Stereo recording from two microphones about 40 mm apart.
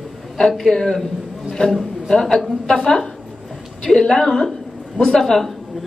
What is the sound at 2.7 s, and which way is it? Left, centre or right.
Speech, centre.